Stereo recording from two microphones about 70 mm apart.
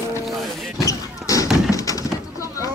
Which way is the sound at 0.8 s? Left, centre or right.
Left.